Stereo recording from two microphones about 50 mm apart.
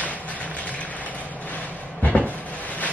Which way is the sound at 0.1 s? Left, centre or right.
Left.